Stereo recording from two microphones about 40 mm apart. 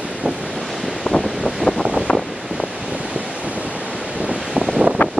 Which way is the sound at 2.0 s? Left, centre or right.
Centre.